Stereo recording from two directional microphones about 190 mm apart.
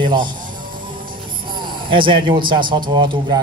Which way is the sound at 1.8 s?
25° right (ahead or behind).